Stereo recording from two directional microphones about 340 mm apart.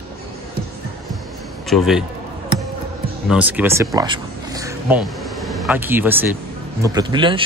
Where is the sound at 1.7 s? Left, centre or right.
Centre.